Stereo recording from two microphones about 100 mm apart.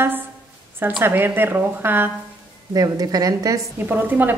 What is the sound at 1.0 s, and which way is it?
A woman's voice, 20° right (ahead or behind).